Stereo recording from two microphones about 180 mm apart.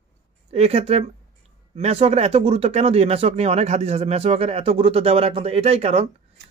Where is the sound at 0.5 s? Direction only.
35° right (ahead or behind).